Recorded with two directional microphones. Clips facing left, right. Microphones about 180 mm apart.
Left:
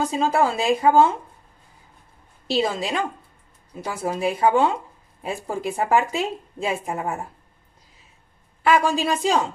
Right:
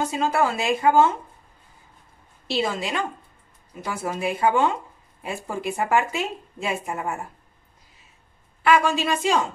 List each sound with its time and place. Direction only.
0.1 s a woman's voice: 35° left (ahead or behind)
2.4 s a woman's voice: 35° left (ahead or behind)
8.6 s a woman's voice: 35° left (ahead or behind)